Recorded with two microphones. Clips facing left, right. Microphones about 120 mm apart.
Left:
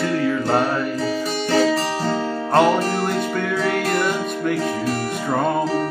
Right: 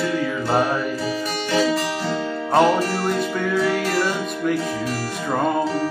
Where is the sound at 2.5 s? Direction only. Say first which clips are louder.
Even; centre (ahead or behind).